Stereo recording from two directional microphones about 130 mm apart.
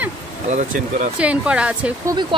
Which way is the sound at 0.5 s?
75° right (ahead or behind).